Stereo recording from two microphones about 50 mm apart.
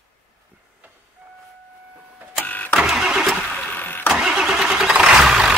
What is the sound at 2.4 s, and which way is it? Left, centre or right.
Vehicle, left.